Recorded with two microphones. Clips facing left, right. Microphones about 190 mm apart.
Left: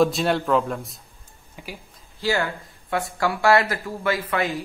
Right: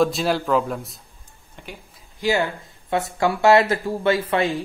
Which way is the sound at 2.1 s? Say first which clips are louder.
Right 3 dB; 20° right (ahead or behind).